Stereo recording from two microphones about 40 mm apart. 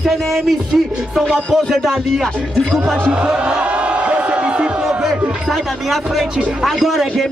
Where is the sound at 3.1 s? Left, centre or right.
Right.